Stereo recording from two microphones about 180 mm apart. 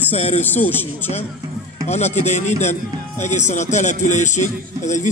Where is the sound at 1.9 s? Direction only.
40° left (ahead or behind).